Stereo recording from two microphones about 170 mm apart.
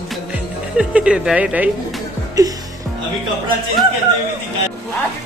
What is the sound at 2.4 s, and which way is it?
Music, 20° right (ahead or behind).